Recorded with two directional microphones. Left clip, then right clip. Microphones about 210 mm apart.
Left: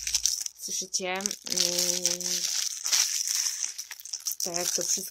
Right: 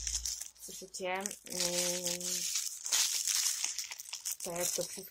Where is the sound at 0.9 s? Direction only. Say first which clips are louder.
Left 5 dB; 45° left (ahead or behind).